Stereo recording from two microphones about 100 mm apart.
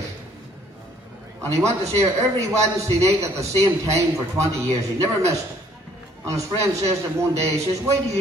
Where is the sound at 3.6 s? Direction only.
30° right (ahead or behind).